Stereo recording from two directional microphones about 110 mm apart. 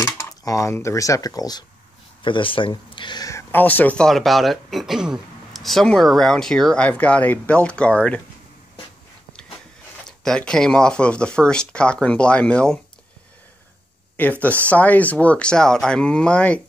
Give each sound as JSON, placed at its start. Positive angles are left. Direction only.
{"t": 0.4, "sound": "speech", "side_deg": 30}
{"t": 2.2, "sound": "speech", "side_deg": 50}
{"t": 3.5, "sound": "speech", "side_deg": 15}
{"t": 10.0, "sound": "speech", "side_deg": 5}
{"t": 14.2, "sound": "speech", "side_deg": 15}